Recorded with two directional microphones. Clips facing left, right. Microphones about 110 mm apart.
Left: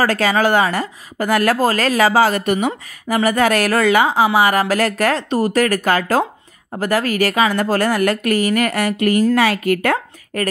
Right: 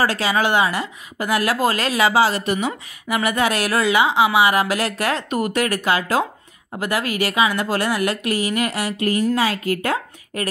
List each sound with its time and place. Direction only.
0.0 s a woman's voice: 45° left (ahead or behind)